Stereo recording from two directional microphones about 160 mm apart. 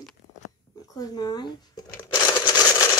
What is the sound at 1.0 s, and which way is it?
Speech, 25° left (ahead or behind).